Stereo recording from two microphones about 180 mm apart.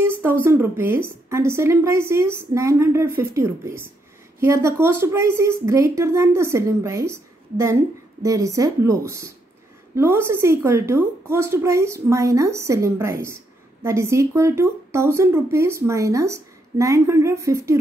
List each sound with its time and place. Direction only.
0.0 s a woman's voice: 10° right (ahead or behind)